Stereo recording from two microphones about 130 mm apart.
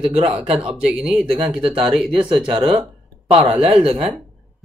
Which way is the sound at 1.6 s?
45° right (ahead or behind).